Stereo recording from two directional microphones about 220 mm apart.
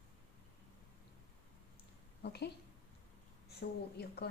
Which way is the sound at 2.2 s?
45° left (ahead or behind).